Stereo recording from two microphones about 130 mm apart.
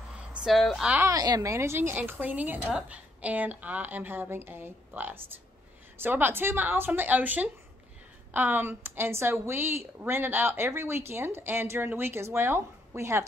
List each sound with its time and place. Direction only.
0.3 s speech: 5° right (ahead or behind)
1.0 s a woman's voice: 30° right (ahead or behind)